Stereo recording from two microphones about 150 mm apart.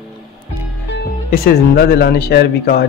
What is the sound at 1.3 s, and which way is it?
A man's voice, 85° left.